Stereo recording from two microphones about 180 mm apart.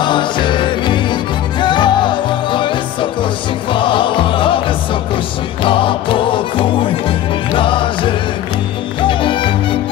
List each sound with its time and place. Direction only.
0.0 s music: 25° left (ahead or behind)
5.6 s music: 30° left (ahead or behind)